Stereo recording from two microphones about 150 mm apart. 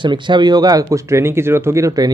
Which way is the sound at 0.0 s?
30° right (ahead or behind).